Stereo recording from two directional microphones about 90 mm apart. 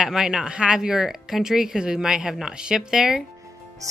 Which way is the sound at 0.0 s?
5° right (ahead or behind).